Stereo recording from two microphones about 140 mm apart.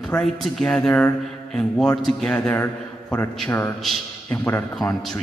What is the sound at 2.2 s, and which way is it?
A man's voice, 10° left (ahead or behind).